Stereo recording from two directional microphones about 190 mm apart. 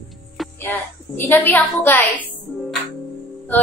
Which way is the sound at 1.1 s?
10° left (ahead or behind).